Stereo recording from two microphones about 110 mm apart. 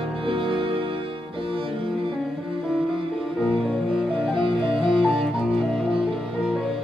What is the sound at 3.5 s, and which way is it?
Cello, 5° right (ahead or behind).